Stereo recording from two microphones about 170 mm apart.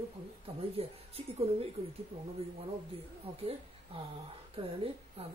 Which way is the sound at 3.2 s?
35° right (ahead or behind).